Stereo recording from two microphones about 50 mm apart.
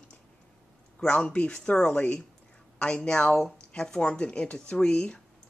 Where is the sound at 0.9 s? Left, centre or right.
Left.